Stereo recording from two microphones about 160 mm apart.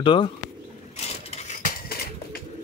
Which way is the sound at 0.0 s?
30° left (ahead or behind).